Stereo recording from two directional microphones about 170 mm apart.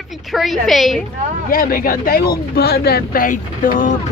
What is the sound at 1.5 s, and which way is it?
Speech, 55° left (ahead or behind).